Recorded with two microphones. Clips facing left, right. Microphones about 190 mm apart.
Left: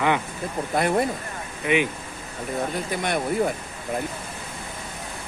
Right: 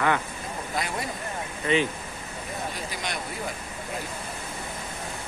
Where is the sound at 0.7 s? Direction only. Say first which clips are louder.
Left 10 dB; 55° left (ahead or behind).